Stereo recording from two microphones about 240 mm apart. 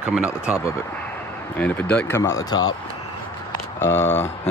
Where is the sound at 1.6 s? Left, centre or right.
Centre.